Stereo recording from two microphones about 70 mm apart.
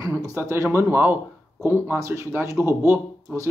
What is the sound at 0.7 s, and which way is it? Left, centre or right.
Speech, right.